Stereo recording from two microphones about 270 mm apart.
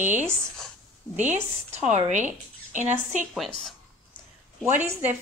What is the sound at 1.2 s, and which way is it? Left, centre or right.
Speech, right.